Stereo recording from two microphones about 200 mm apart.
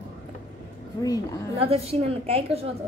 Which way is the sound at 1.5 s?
30° right (ahead or behind).